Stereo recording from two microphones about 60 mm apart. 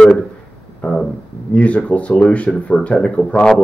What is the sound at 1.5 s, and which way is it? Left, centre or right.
Speech, centre.